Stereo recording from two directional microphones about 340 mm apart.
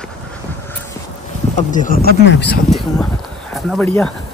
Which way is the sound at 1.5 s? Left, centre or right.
Left.